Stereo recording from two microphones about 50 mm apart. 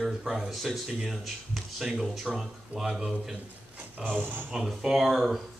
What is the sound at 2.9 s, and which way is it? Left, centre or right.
Speech, centre.